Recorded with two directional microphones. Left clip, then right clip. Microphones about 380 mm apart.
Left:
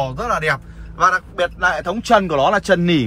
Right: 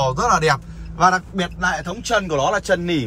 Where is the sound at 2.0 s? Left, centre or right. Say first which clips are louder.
Left 5 dB; centre.